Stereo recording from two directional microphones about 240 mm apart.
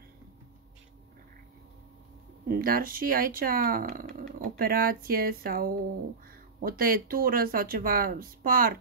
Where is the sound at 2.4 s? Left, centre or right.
Right.